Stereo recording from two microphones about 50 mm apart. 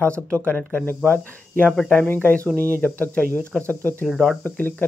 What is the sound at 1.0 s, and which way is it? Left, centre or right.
Speech, left.